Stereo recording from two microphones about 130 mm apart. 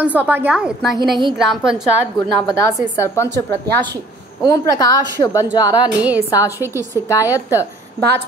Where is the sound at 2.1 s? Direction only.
25° left (ahead or behind).